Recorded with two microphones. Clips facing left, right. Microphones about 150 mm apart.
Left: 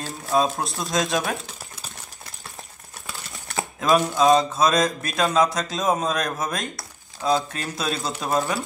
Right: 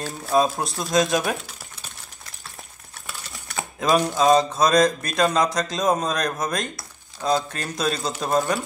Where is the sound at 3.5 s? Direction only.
5° left (ahead or behind).